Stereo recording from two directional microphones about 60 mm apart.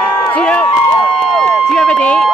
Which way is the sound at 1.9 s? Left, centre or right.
Centre.